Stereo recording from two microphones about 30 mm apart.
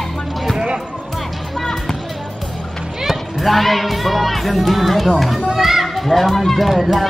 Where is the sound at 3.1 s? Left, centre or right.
Centre.